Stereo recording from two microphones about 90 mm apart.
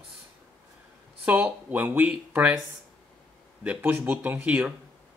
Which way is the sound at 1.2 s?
20° right (ahead or behind).